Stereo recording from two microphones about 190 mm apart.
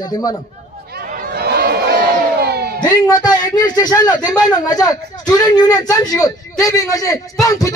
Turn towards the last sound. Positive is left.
turn(degrees=15)  # may be behind; listen again after turning